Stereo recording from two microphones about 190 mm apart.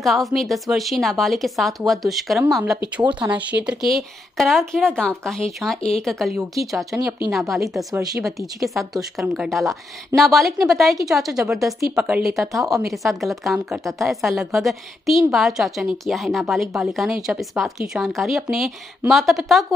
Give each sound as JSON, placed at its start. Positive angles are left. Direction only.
{"t": 0.0, "sound": "speech", "side_deg": 0}
{"t": 3.0, "sound": "speech", "side_deg": -25}
{"t": 3.3, "sound": "speech", "side_deg": -5}
{"t": 6.9, "sound": "speech", "side_deg": -15}
{"t": 7.2, "sound": "speech", "side_deg": 0}
{"t": 7.9, "sound": "speech", "side_deg": -20}
{"t": 8.2, "sound": "speech", "side_deg": 0}